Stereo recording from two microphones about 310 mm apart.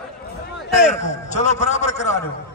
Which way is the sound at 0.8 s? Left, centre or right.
Left.